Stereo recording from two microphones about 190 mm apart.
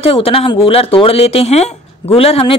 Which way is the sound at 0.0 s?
30° left (ahead or behind).